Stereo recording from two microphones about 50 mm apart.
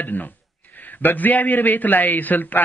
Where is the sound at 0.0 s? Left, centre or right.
Left.